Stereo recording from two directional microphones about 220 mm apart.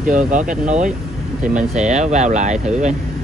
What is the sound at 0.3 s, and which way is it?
Speech, 35° right (ahead or behind).